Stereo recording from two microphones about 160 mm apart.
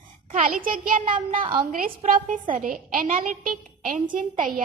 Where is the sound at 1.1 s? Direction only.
35° right (ahead or behind).